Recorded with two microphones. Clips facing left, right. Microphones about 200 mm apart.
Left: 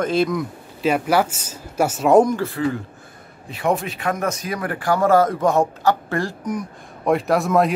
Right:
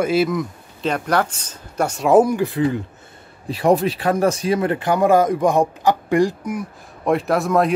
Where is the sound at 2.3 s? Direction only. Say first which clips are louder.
Right 3 dB; 20° right (ahead or behind).